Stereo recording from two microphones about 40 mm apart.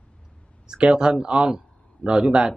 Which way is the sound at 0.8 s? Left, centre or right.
Right.